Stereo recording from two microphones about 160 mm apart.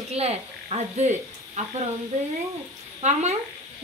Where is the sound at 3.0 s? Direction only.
45° right (ahead or behind).